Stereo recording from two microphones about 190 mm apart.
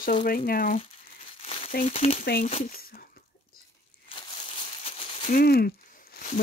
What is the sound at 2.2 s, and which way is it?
Speech, 50° left (ahead or behind).